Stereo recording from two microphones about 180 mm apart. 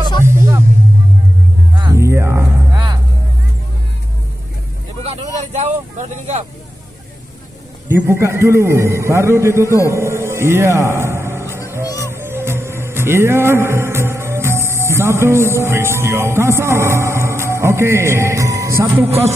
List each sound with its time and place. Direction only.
0.2 s music: 15° right (ahead or behind)
1.8 s music: 15° right (ahead or behind)
5.0 s vehicle: 35° right (ahead or behind)
7.9 s a man's voice: 15° right (ahead or behind)
12.0 s music: 15° right (ahead or behind)